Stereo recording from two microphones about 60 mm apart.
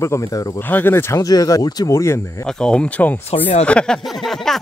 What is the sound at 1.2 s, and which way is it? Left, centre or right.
Speech, left.